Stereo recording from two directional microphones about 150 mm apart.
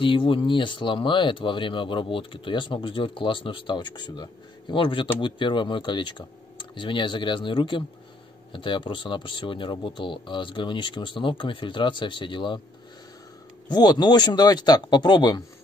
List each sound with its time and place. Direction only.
0.0 s speech: 35° left (ahead or behind)
13.7 s speech: 30° left (ahead or behind)